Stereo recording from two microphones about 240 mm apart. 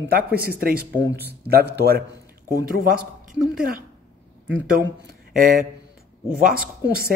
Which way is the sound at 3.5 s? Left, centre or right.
Right.